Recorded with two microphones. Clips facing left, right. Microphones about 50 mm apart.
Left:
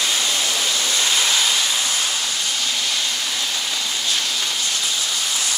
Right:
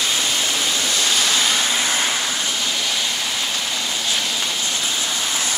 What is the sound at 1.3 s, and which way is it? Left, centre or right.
Vehicle, right.